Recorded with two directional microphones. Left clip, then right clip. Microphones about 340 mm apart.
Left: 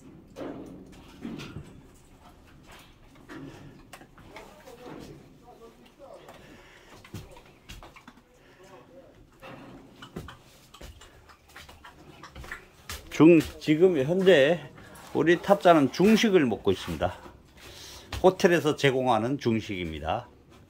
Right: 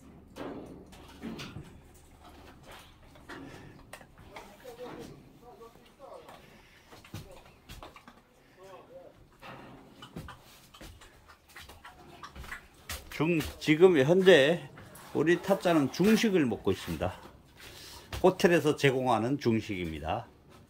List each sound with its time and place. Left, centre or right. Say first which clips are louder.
13.1 s speech: left 13 dB; centre
13.6 s speech: even; centre